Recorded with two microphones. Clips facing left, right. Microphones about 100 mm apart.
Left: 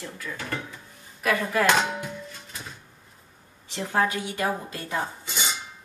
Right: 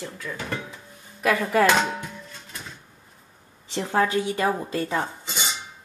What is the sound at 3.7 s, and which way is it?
A woman's voice, 25° right (ahead or behind).